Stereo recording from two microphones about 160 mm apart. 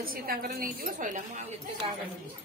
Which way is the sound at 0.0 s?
65° right (ahead or behind).